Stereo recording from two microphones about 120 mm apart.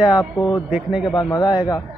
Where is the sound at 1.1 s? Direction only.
40° left (ahead or behind).